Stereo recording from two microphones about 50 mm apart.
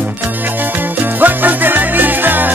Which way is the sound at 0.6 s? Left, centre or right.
Right.